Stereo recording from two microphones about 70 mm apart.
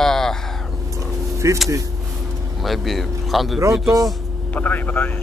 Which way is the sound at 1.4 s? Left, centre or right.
Right.